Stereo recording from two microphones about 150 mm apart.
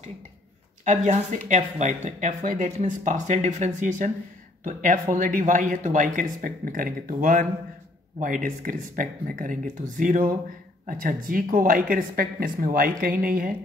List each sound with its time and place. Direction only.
0.8 s speech: 55° right (ahead or behind); by 13.5 s 70° right (ahead or behind)